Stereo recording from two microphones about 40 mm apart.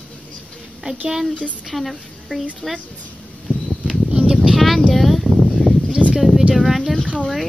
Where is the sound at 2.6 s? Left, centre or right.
Centre.